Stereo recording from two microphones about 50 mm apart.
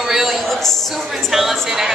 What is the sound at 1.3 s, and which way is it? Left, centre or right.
Speech, centre.